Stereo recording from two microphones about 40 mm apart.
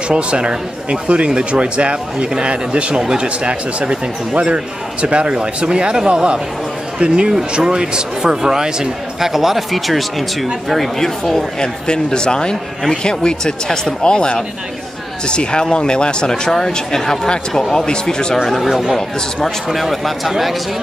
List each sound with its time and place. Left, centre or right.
0.1 s a man's voice: right; by 10.9 s centre
11.0 s speech: centre
18.4 s speech: centre